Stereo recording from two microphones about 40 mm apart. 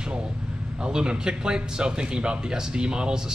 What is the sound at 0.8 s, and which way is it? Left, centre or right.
Speech, right.